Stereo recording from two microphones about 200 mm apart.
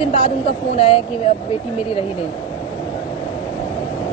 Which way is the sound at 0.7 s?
30° left (ahead or behind).